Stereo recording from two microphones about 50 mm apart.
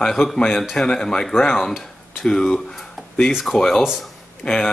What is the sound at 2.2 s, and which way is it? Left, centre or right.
Speech, centre.